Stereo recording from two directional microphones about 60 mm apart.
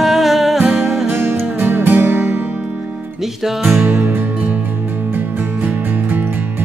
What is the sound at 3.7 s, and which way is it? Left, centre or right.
Music, right.